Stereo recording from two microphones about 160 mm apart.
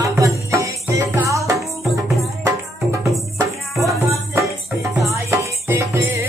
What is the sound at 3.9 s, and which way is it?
Music, 20° right (ahead or behind).